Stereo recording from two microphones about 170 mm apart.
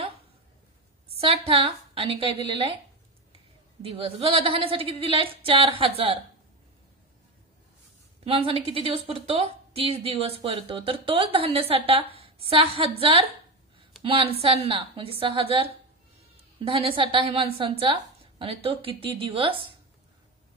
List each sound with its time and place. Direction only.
1.1 s a woman's voice: 35° right (ahead or behind)
3.8 s speech: 35° right (ahead or behind)
8.2 s a woman's voice: 35° right (ahead or behind)